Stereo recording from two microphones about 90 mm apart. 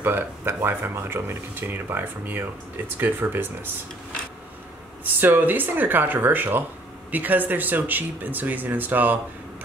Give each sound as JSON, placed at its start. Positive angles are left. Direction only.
{"t": 0.0, "sound": "speech", "side_deg": -25}
{"t": 5.2, "sound": "speech", "side_deg": -20}